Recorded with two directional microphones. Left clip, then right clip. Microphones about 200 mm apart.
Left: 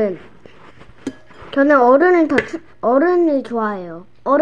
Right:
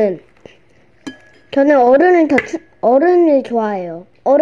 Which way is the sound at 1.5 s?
20° right (ahead or behind).